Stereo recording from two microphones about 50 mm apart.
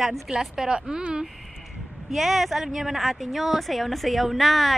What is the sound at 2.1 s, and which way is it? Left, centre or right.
Speech, centre.